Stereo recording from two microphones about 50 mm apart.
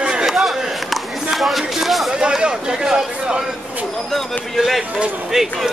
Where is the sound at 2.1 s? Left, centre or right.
Centre.